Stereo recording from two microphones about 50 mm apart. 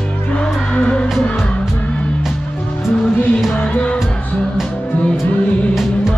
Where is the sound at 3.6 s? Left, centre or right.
Left.